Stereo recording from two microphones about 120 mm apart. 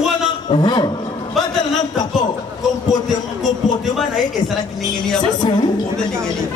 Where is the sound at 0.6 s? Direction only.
35° left (ahead or behind).